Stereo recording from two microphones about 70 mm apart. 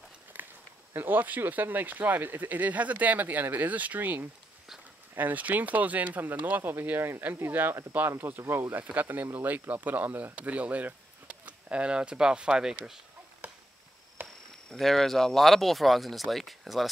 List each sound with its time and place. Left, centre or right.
0.9 s speech: right; by 13.0 s centre
13.4 s chop: right
14.2 s speech: centre